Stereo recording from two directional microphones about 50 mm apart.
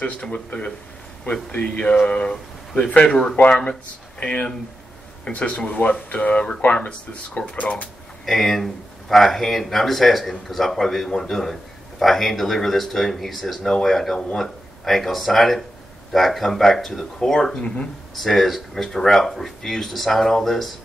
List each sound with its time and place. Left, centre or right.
0.0 s a man's voice: left
8.3 s a man's voice: centre
17.6 s speech: centre
18.2 s speech: centre